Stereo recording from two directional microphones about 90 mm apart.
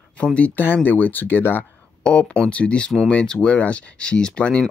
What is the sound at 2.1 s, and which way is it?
Speech, 10° left (ahead or behind).